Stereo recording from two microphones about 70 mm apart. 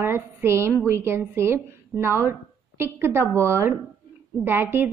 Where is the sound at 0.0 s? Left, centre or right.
Right.